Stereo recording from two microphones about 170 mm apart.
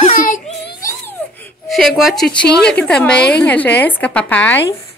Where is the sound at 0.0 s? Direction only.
50° left (ahead or behind).